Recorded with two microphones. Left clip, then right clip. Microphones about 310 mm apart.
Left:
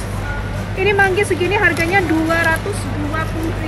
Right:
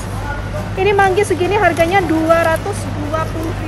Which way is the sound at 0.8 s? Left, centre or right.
Right.